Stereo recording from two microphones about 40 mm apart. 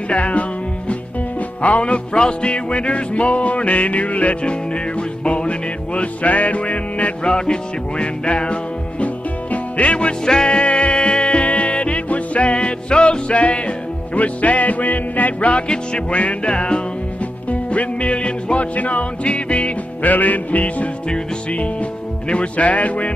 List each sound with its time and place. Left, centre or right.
0.1 s music: left
7.2 s music: left
10.2 s music: left
10.5 s music: left
15.5 s music: left